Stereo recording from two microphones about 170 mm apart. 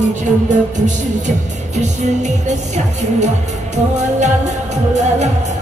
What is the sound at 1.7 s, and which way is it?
Music, 45° right (ahead or behind).